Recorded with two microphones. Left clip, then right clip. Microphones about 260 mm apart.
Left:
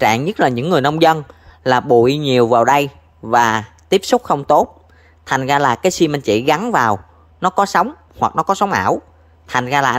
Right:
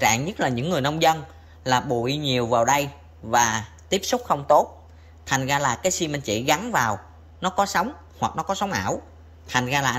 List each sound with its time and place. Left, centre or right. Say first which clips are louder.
0.0 s a man's voice: left 8 dB; centre